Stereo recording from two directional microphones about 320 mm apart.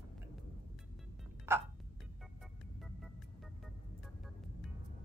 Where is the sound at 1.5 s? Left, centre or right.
Centre.